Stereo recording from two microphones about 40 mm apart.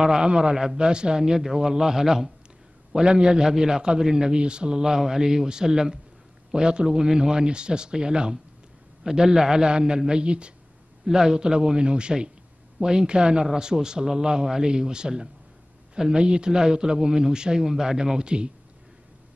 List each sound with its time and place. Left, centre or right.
0.0 s a man's voice: centre
11.1 s a man's voice: centre